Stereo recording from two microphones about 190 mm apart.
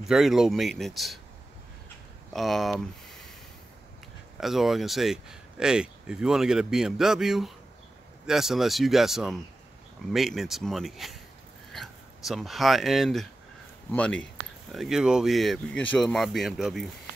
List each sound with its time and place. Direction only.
0.0 s speech: centre (ahead or behind)
2.3 s speech: centre (ahead or behind)
4.4 s speech: centre (ahead or behind)